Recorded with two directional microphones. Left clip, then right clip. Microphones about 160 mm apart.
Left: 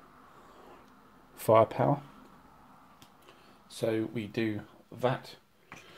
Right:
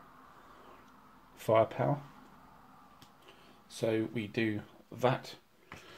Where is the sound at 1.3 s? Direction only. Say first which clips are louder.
Left 4 dB; 35° left (ahead or behind).